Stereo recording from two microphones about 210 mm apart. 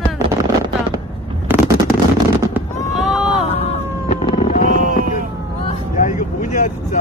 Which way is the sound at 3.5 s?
30° left (ahead or behind).